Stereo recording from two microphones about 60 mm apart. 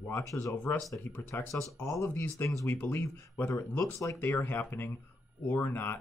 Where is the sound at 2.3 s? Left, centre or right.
Left.